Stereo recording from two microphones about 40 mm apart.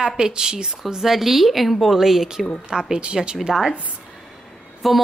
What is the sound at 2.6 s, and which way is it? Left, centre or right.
Speech, centre.